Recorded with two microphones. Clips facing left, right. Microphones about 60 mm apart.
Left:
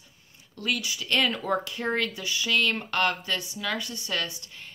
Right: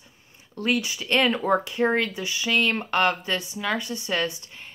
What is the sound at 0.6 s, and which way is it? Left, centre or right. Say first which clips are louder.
Speech: right 5 dB; right.